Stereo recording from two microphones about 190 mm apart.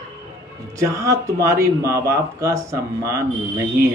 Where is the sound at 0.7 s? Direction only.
15° right (ahead or behind).